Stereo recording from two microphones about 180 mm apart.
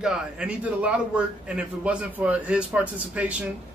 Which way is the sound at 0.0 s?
5° right (ahead or behind).